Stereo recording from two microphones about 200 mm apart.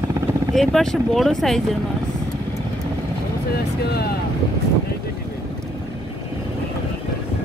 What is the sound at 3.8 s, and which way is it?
Speech, 50° left (ahead or behind).